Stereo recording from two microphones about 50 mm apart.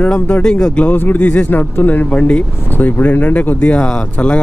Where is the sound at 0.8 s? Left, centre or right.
Left.